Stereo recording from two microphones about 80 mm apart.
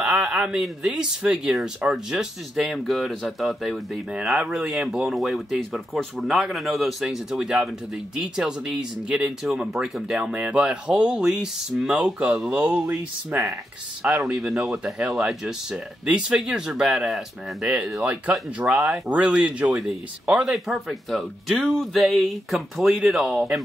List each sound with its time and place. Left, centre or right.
0.0 s a sound: centre
0.6 s speech: centre
12.8 s speech: right
14.3 s speech: centre
20.5 s speech: centre